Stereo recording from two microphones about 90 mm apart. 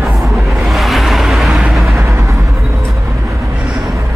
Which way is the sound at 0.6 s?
Centre (ahead or behind).